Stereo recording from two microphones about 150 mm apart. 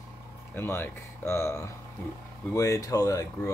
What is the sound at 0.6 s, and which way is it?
Speech, 15° left (ahead or behind).